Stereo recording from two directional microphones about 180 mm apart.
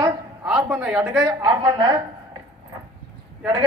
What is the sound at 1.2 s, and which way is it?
Speech, 25° right (ahead or behind).